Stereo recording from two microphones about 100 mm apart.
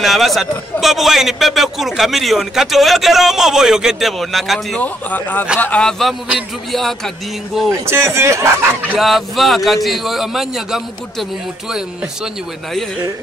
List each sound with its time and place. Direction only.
0.0 s a man's voice: centre (ahead or behind)
4.7 s a man's voice: 15° left (ahead or behind)
7.8 s speech: 25° right (ahead or behind)
8.9 s a man's voice: centre (ahead or behind)